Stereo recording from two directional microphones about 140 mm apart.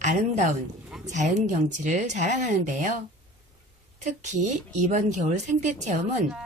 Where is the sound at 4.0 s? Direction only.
60° right (ahead or behind).